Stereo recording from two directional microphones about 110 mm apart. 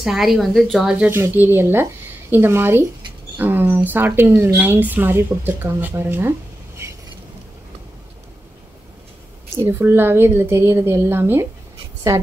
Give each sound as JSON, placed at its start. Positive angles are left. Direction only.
{"t": 0.0, "sound": "speech", "side_deg": -5}
{"t": 1.1, "sound": "speech", "side_deg": -20}
{"t": 6.8, "sound": "vehicle", "side_deg": -20}
{"t": 9.7, "sound": "a woman's voice", "side_deg": -20}